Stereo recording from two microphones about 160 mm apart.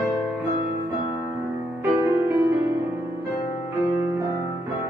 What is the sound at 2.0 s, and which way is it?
Music, 20° right (ahead or behind).